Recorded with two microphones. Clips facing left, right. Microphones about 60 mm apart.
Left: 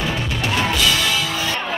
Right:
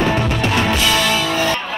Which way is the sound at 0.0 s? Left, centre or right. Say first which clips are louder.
Right 6 dB; right.